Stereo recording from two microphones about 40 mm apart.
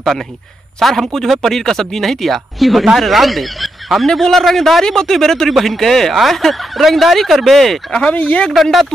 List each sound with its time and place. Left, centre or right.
0.7 s speech: centre
8.1 s speech: left